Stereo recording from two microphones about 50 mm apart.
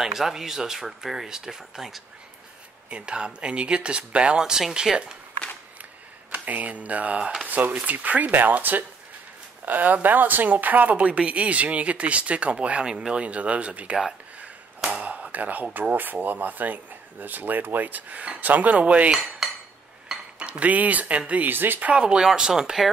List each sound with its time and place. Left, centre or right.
0.0 s speech: centre
2.9 s speech: centre
6.3 s speech: right
7.4 s speech: right
20.1 s dishes: centre
21.3 s speech: right
21.9 s speech: centre